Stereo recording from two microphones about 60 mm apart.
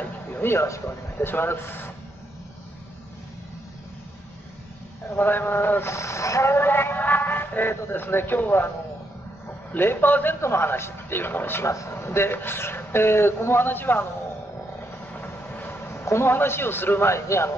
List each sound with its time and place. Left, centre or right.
0.0 s a sound: left
1.1 s speech: left
5.1 s speech: left
6.5 s speech: left
10.4 s speech: left
11.6 s a man's voice: left
15.1 s a sound: left
17.1 s a man's voice: left